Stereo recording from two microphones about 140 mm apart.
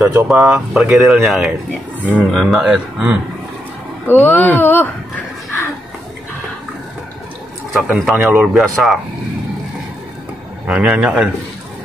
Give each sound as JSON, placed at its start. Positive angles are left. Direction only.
{"t": 0.0, "sound": "speech", "side_deg": -20}
{"t": 0.3, "sound": "speech", "side_deg": -5}
{"t": 2.0, "sound": "a man's voice", "side_deg": -10}
{"t": 2.3, "sound": "speech", "side_deg": 0}
{"t": 4.1, "sound": "speech", "side_deg": 15}
{"t": 7.7, "sound": "a man's voice", "side_deg": 0}
{"t": 10.7, "sound": "a man's voice", "side_deg": -10}